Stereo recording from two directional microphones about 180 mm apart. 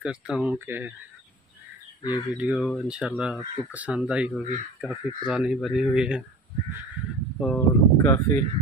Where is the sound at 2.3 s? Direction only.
5° right (ahead or behind).